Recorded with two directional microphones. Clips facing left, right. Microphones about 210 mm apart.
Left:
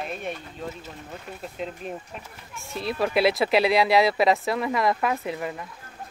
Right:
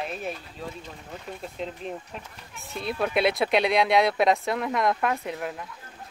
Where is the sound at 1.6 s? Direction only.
5° left (ahead or behind).